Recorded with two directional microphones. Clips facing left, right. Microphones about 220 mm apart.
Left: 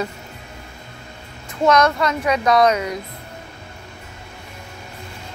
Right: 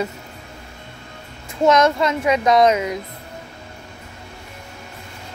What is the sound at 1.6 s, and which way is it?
Speech, 25° right (ahead or behind).